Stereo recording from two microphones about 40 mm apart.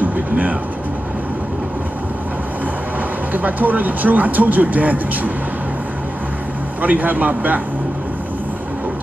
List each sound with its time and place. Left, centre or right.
0.0 s speech: right
3.3 s speech: right
6.8 s speech: right